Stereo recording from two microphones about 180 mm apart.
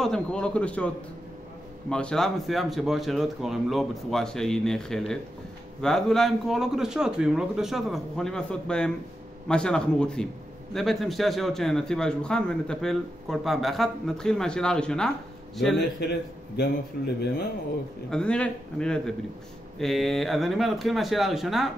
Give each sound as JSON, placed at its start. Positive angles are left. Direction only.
{"t": 0.0, "sound": "a man's voice", "side_deg": 5}
{"t": 15.8, "sound": "speech", "side_deg": 65}
{"t": 18.1, "sound": "a man's voice", "side_deg": 5}